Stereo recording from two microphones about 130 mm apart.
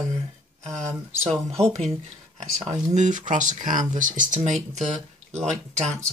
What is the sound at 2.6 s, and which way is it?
Speech, 65° right (ahead or behind).